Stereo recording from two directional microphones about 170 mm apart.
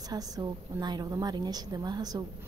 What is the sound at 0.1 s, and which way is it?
A woman's voice, 25° right (ahead or behind).